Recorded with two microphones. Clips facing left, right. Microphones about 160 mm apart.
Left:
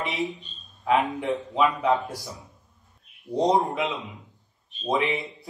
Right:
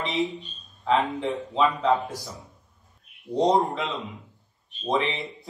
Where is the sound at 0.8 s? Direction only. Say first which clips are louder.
Left 1 dB; 10° left (ahead or behind).